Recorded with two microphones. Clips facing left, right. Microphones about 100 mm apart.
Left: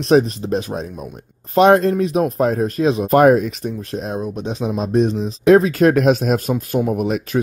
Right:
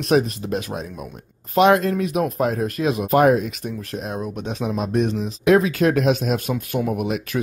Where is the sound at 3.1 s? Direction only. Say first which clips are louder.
Left 4 dB; 45° left (ahead or behind).